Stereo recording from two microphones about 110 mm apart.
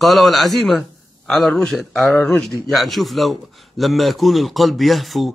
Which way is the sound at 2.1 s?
20° left (ahead or behind).